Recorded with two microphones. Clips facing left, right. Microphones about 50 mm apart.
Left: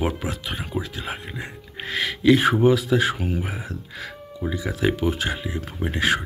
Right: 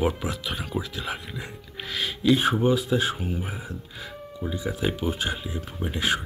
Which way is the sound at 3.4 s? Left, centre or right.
Left.